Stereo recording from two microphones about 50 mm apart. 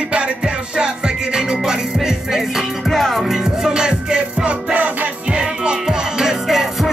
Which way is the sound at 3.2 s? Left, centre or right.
Centre.